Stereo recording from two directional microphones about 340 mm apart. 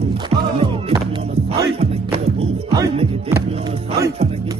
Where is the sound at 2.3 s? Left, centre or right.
Centre.